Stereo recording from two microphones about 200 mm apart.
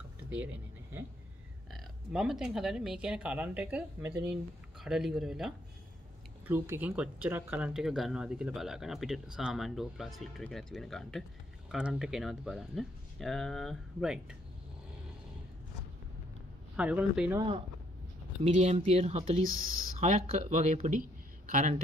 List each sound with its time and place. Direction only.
1.7 s speech: centre (ahead or behind)
16.7 s speech: 5° right (ahead or behind)
18.4 s speech: 35° right (ahead or behind)